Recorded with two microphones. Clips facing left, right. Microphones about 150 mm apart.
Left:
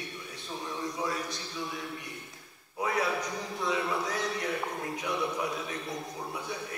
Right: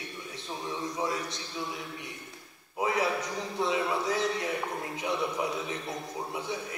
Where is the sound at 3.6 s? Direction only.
25° right (ahead or behind).